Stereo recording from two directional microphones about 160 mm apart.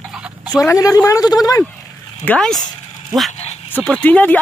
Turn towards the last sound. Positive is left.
turn(degrees=10)  # may be behind; listen again after turning